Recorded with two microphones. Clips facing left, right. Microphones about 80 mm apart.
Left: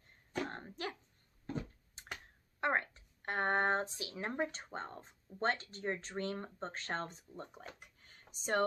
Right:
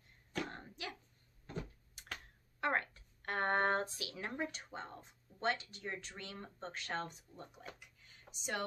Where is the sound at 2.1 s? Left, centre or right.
Left.